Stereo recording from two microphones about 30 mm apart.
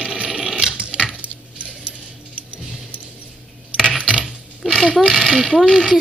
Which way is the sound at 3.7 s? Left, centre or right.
Left.